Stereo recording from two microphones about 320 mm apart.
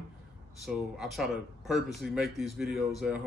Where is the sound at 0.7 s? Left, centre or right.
Centre.